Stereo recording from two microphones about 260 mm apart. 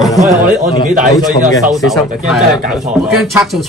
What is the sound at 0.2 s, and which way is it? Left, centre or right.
Speech, centre.